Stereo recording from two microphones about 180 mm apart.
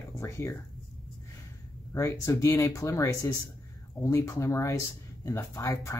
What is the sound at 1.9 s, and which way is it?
Speech, 15° left (ahead or behind).